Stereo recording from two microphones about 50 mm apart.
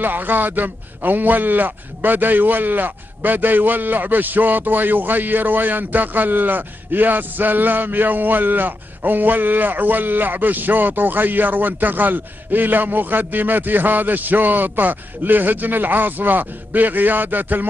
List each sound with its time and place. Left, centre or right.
0.0 s a man's voice: right